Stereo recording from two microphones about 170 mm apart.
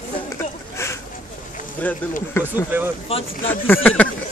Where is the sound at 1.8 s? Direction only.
10° left (ahead or behind).